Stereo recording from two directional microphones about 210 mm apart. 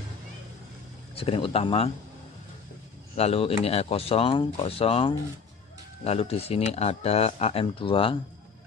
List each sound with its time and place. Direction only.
1.1 s speech: 25° left (ahead or behind)
3.2 s speech: 30° left (ahead or behind)